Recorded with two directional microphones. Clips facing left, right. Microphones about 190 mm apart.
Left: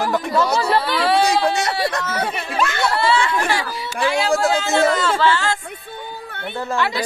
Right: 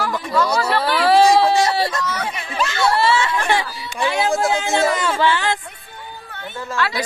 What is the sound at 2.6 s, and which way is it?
Chatter, 55° left (ahead or behind).